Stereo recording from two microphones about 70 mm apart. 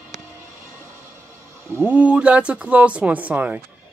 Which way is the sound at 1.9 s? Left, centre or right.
Centre.